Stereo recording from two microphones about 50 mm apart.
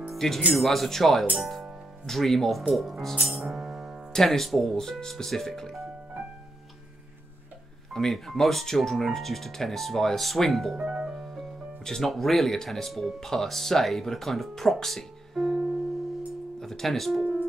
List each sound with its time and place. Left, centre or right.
0.1 s music: centre
0.5 s speech: centre
1.3 s speech: centre
2.0 s speech: centre
3.2 s music: centre
4.1 s speech: centre
7.9 s speech: centre
11.1 s music: centre
11.8 s speech: centre